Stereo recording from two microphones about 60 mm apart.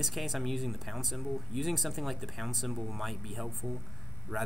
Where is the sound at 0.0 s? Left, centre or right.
Centre.